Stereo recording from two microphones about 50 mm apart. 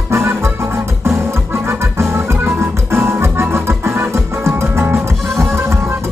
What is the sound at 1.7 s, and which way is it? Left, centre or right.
Organ, right.